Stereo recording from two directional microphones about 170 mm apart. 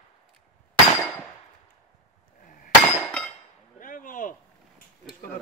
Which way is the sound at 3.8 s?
50° left (ahead or behind).